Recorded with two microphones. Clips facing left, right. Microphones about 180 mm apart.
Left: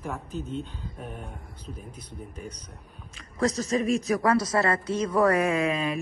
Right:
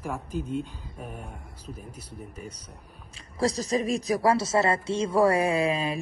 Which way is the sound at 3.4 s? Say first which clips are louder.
Left 1 dB; 35° right (ahead or behind).